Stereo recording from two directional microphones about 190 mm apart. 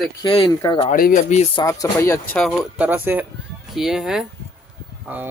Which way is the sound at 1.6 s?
15° left (ahead or behind).